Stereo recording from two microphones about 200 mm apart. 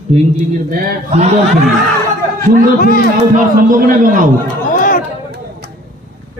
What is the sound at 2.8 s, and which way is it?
Speech, 45° left (ahead or behind).